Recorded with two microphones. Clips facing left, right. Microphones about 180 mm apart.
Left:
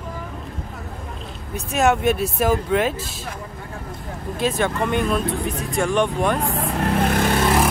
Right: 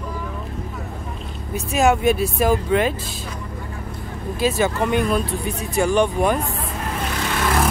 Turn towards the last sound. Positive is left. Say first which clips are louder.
# left 6 dB
turn(degrees=50)  # may be behind; listen again after turning